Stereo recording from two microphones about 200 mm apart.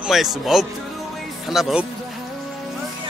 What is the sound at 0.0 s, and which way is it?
Speech, centre (ahead or behind).